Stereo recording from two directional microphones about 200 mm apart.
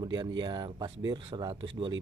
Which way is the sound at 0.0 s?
20° right (ahead or behind).